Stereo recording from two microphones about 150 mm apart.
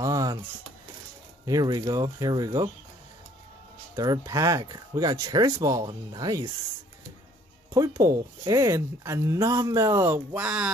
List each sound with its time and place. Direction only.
0.0 s a sound: 25° right (ahead or behind)
1.4 s speech: 25° right (ahead or behind)
3.9 s speech: 20° right (ahead or behind)
7.7 s speech: 20° right (ahead or behind)